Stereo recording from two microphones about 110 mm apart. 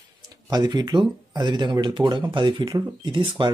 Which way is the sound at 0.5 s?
40° right (ahead or behind).